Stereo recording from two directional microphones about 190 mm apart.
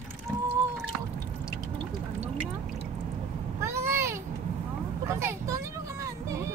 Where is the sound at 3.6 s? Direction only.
15° right (ahead or behind).